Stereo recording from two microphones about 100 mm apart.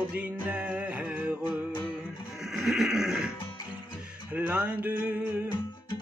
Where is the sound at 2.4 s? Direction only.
5° right (ahead or behind).